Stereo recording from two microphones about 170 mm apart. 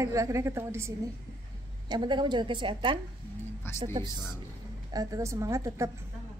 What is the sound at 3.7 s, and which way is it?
Speech, 15° left (ahead or behind).